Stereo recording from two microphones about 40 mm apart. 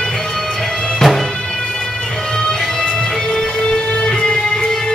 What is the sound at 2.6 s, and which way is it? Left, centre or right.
Music, centre.